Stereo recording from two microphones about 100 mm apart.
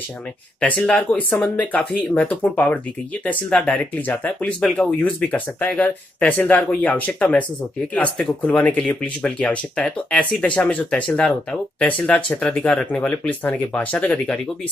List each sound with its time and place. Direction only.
0.6 s speech: 10° left (ahead or behind)
4.6 s speech: 5° left (ahead or behind)
4.8 s speech: 15° left (ahead or behind)